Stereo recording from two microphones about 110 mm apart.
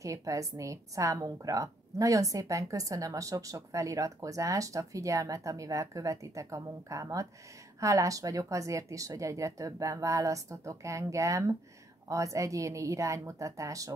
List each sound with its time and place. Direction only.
0.0 s a woman's voice: 30° right (ahead or behind)